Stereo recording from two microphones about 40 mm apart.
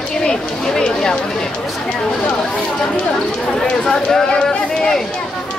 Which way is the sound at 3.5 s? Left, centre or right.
Centre.